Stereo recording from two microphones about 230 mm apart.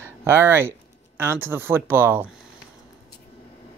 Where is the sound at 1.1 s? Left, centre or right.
Centre.